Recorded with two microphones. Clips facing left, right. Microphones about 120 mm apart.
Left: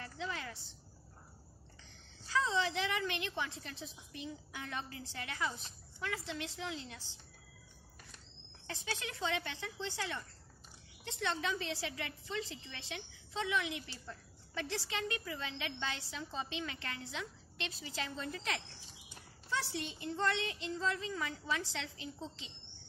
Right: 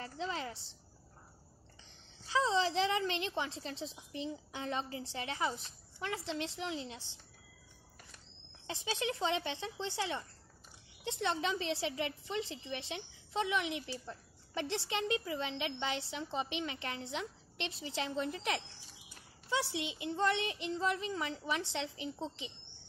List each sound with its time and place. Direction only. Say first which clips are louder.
0.0 s a sound: right 3 dB; 25° right (ahead or behind)
1.9 s a woman's voice: right 3 dB; 20° right (ahead or behind)
8.6 s a woman's voice: right 6 dB; 20° right (ahead or behind)
19.7 s a woman's voice: right 2 dB; 15° right (ahead or behind)